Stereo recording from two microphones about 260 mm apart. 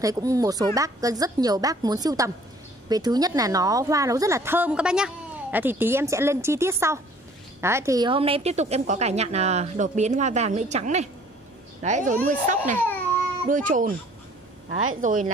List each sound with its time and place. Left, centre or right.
0.0 s a woman's voice: centre; by 13.9 s right
15.0 s a woman's voice: right